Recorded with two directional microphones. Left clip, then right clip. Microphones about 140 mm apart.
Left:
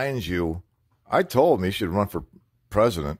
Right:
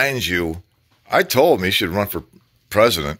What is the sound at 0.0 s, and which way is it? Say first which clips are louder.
Speech: right 7 dB; 35° left (ahead or behind).